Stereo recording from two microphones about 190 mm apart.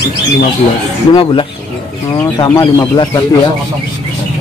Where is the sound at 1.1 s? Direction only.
25° left (ahead or behind).